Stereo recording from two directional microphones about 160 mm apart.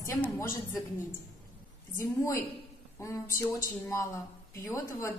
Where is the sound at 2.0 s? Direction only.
20° left (ahead or behind).